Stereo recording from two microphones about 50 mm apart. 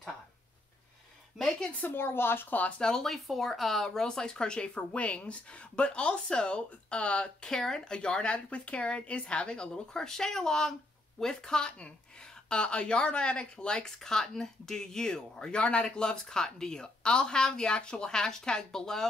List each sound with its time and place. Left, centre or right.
1.8 s a woman's voice: left
2.8 s speech: centre
3.1 s speech: centre; by 7.2 s left
7.4 s speech: centre